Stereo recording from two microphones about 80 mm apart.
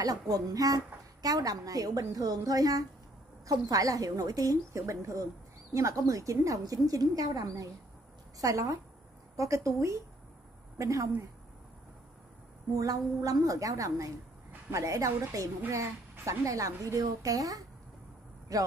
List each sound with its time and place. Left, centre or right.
0.0 s a woman's voice: right
12.7 s a woman's voice: right